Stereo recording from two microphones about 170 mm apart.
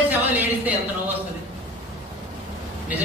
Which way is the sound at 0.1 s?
10° right (ahead or behind).